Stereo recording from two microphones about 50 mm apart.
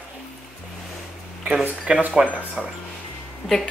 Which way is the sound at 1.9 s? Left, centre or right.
Right.